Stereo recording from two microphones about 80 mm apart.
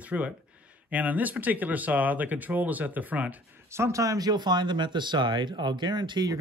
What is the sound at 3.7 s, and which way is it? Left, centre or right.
Speech, right.